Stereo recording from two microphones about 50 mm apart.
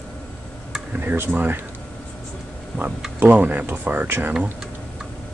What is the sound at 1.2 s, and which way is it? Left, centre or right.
Speech, right.